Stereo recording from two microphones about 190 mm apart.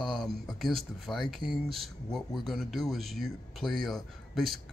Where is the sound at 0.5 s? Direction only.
Centre (ahead or behind).